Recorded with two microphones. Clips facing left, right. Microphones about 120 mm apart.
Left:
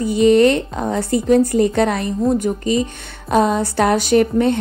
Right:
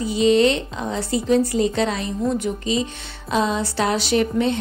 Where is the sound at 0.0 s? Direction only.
50° left (ahead or behind).